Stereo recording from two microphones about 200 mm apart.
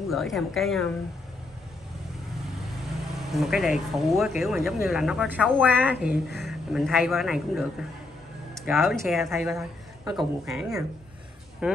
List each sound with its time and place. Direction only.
0.1 s speech: centre (ahead or behind)
3.3 s speech: centre (ahead or behind)